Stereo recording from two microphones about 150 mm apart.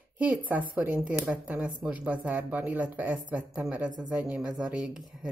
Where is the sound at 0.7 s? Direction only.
10° right (ahead or behind).